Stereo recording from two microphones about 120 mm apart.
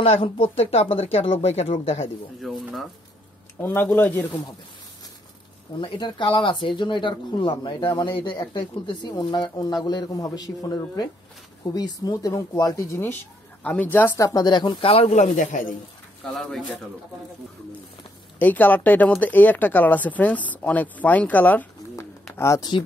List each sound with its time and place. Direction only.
0.0 s speech: 50° left (ahead or behind)
2.4 s speech: centre (ahead or behind)
3.6 s speech: 15° left (ahead or behind)
5.8 s speech: 40° left (ahead or behind); by 15.7 s 90° left
16.3 s speech: centre (ahead or behind)
18.4 s speech: 15° left (ahead or behind)